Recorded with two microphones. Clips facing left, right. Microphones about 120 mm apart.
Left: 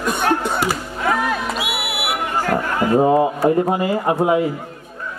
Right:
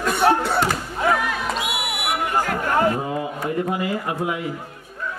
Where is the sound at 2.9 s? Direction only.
35° left (ahead or behind).